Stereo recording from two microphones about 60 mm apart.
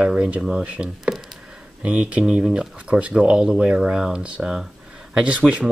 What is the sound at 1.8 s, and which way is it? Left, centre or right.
Speech, right.